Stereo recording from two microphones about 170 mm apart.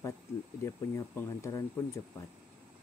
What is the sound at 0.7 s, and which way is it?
Speech, 15° left (ahead or behind).